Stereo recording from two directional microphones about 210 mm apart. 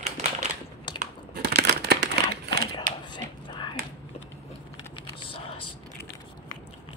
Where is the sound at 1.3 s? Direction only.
50° right (ahead or behind).